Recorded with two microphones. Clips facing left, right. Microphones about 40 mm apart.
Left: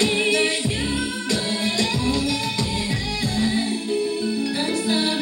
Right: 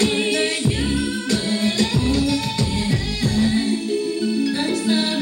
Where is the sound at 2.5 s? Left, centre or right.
Right.